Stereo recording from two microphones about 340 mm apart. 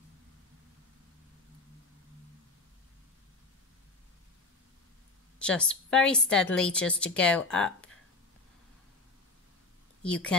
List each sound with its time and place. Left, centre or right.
5.4 s a woman's voice: centre
10.0 s a woman's voice: centre